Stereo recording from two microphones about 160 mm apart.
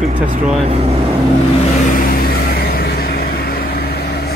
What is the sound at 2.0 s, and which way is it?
Vehicle, 65° left (ahead or behind).